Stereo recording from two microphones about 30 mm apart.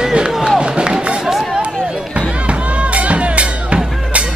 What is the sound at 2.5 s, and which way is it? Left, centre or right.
Music, right.